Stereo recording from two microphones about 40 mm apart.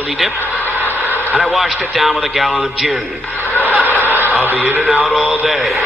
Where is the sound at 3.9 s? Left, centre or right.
Left.